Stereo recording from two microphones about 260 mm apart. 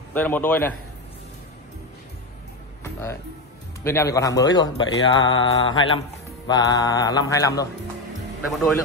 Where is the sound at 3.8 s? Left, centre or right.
Centre.